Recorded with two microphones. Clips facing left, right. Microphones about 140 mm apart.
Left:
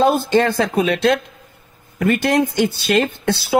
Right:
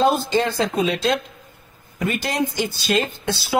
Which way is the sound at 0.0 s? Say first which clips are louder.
Left 4 dB; 55° left (ahead or behind).